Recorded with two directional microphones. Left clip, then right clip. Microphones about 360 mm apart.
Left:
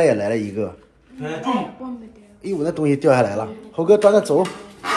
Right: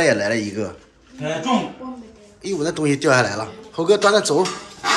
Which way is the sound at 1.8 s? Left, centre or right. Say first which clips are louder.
Left 1 dB; left.